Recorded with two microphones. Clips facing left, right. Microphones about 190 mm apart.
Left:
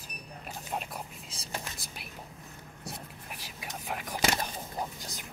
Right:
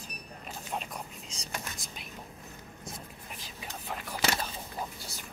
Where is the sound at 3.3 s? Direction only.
10° left (ahead or behind).